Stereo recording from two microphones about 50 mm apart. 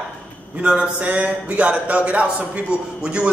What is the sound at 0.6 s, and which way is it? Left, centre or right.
A man's voice, right.